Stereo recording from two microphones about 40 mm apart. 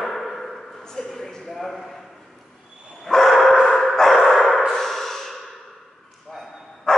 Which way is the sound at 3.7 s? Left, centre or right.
Centre.